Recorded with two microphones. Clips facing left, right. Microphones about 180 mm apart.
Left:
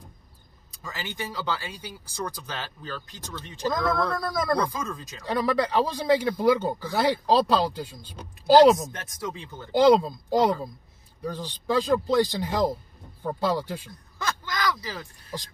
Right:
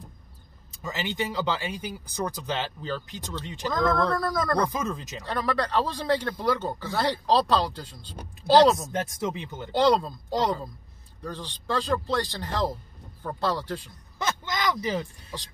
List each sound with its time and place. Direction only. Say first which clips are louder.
0.8 s speech: right 5 dB; 20° right (ahead or behind)
3.7 s speech: right 3 dB; 10° left (ahead or behind)
4.6 s speech: right 3 dB; 20° right (ahead or behind)
5.2 s speech: left 4 dB; 15° left (ahead or behind)
8.9 s speech: right 6 dB; 25° right (ahead or behind)
9.7 s speech: left 4 dB; 10° left (ahead or behind)
14.1 s a sound: right 1 dB; 20° right (ahead or behind)